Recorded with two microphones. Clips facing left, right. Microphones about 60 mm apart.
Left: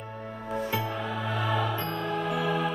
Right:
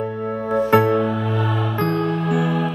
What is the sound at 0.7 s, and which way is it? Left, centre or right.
Music, right.